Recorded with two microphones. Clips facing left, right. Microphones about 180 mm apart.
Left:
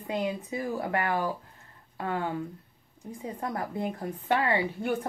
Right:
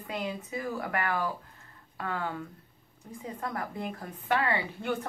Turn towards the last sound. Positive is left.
turn(degrees=25)  # may be behind; listen again after turning